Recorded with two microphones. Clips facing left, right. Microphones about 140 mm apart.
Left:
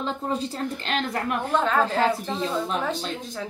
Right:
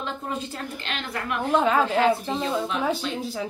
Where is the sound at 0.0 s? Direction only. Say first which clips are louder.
Left 3 dB; 35° left (ahead or behind).